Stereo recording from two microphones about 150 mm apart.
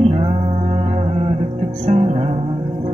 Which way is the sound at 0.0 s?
40° right (ahead or behind).